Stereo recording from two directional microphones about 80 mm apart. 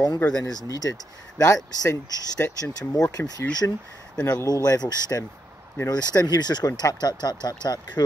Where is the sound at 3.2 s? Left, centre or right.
Left.